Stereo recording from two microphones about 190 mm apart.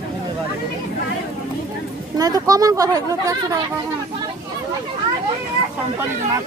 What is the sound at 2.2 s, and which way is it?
Speech, 20° right (ahead or behind).